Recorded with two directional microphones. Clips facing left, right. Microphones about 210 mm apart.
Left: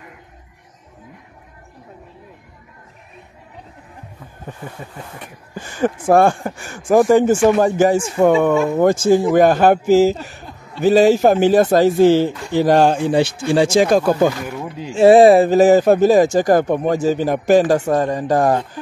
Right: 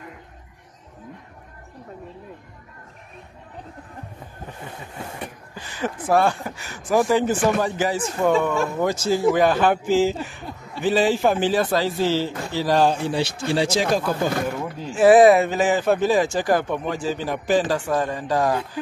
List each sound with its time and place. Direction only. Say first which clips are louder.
5.5 s speech: left 10 dB; 50° left (ahead or behind)
15.0 s speech: left 4 dB; 30° left (ahead or behind); by 18.6 s 50° left (ahead or behind)